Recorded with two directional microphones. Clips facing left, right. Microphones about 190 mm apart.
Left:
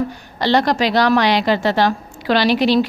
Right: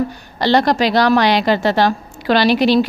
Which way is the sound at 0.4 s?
35° right (ahead or behind).